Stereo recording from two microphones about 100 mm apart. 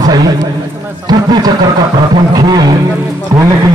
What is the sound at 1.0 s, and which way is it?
A man's voice, 45° right (ahead or behind).